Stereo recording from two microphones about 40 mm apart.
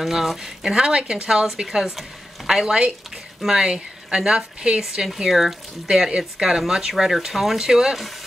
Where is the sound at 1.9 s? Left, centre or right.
Centre; by 4.8 s right.